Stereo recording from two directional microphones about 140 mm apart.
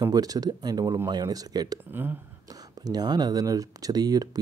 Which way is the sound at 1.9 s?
15° right (ahead or behind).